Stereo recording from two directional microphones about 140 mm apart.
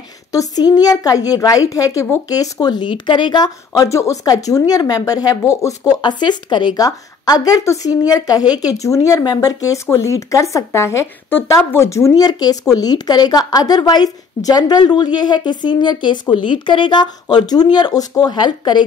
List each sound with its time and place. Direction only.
0.3 s a woman's voice: 25° left (ahead or behind)